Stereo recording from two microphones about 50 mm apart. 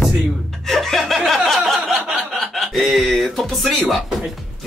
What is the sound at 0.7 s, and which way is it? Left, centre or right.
Speech, centre.